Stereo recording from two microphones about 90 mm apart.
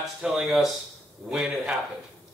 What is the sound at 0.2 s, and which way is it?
A man's voice, 5° right (ahead or behind).